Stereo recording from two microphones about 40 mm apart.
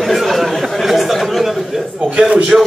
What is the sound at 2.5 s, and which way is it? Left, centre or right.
Speech, centre.